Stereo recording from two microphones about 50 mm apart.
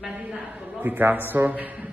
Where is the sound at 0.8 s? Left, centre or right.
Right.